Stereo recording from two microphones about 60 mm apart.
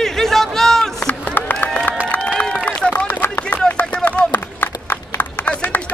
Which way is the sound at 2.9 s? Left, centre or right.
Left.